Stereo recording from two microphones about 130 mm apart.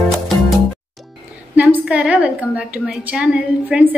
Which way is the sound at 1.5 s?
10° right (ahead or behind).